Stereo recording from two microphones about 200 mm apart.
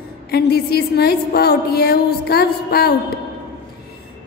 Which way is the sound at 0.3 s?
50° left (ahead or behind).